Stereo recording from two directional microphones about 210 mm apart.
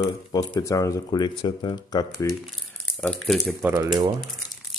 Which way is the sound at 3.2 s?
Centre (ahead or behind).